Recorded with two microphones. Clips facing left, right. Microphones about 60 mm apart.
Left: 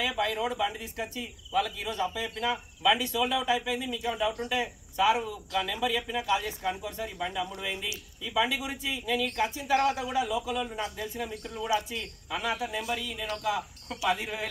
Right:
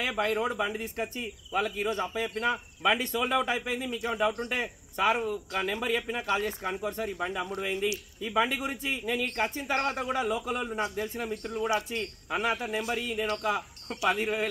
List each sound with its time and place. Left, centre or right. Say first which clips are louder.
0.0 s speech: right 1 dB; right